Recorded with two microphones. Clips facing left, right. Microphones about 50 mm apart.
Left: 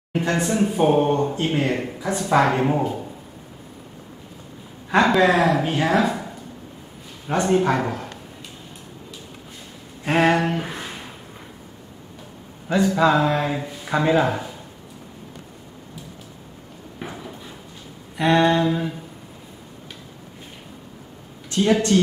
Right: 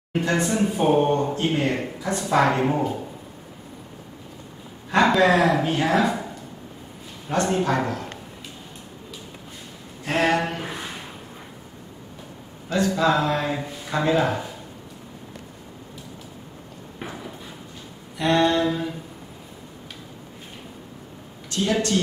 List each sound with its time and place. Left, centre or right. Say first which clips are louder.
0.3 s speech: left 1 dB; centre
4.9 s speech: left 1 dB; centre
7.3 s speech: left 3 dB; centre
10.0 s speech: left 4 dB; centre
10.3 s a sound: left 2 dB; centre
12.6 s speech: left 3 dB; centre
13.8 s speech: left 2 dB; centre
17.0 s clip-clop: left 1 dB; centre
18.1 s speech: left 2 dB; left
21.5 s a sound: left 5 dB; centre